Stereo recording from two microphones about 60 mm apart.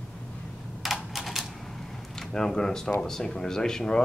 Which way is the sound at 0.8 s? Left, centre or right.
Centre.